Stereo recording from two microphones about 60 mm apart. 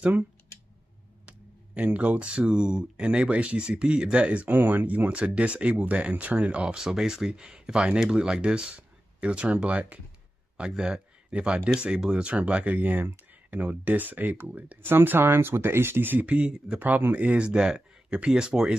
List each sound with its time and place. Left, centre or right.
1.8 s speech: right
17.5 s speech: centre